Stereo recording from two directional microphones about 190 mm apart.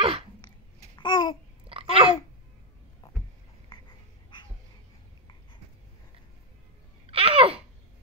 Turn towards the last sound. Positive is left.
turn(degrees=-30)  # may be behind; listen again after turning